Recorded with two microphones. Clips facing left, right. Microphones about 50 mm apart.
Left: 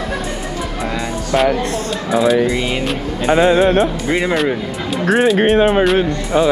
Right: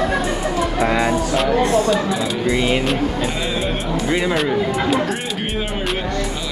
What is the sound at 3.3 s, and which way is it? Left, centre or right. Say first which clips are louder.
Speech: left 12 dB; left.